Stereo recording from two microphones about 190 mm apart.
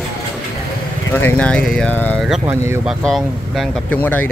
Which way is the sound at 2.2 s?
Centre (ahead or behind).